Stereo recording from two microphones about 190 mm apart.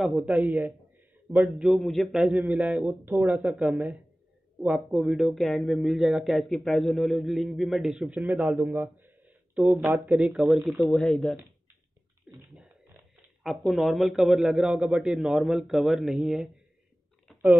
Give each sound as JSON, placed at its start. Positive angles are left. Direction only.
{"t": 0.0, "sound": "a man's voice", "side_deg": 0}
{"t": 12.4, "sound": "beatboxing", "side_deg": 0}
{"t": 13.4, "sound": "speech", "side_deg": 0}
{"t": 17.3, "sound": "a sound", "side_deg": 0}